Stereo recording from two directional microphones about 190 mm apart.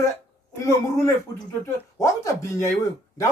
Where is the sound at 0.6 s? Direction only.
15° left (ahead or behind).